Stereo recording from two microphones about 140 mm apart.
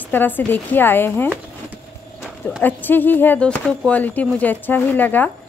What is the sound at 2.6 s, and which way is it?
Speech, 15° left (ahead or behind).